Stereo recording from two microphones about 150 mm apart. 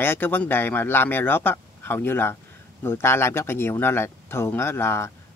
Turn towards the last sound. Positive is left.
turn(degrees=15)  # may be behind; listen again after turning